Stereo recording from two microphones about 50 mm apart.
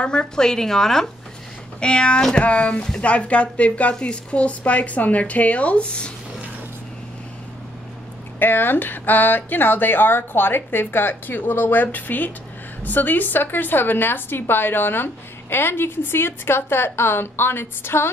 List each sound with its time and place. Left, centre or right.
0.0 s speech: centre
1.8 s speech: centre
8.4 s a woman's voice: left